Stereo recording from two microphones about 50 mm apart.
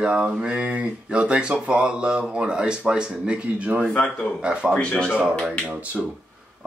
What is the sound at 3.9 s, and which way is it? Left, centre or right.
Speech, centre.